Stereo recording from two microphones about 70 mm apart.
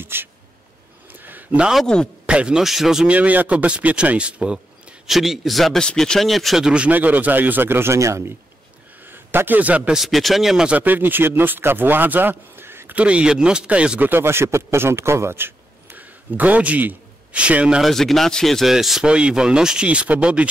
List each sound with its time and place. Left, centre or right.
0.0 s a sound: right
1.6 s speech: centre
3.1 s a man's voice: right
5.1 s speech: centre; by 8.4 s right
9.0 s a man's voice: right
9.9 s speech: centre
10.7 s speech: right
12.9 s speech: centre
17.8 s speech: centre